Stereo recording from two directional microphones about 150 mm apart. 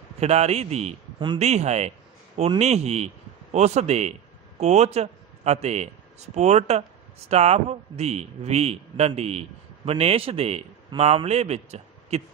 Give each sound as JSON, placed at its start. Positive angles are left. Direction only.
{"t": 0.2, "sound": "a man's voice", "side_deg": -45}